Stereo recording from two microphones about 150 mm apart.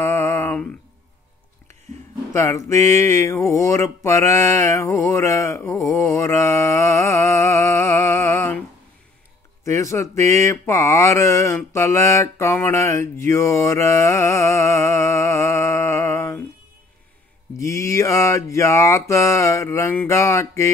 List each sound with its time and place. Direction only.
0.0 s mantra: 20° left (ahead or behind)
2.3 s mantra: 20° left (ahead or behind)
9.7 s mantra: 20° left (ahead or behind)
17.6 s mantra: 20° left (ahead or behind)